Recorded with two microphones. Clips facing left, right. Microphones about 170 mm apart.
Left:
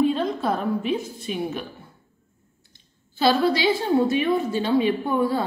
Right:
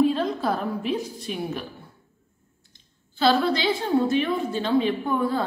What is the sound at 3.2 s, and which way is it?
Speech, 10° left (ahead or behind).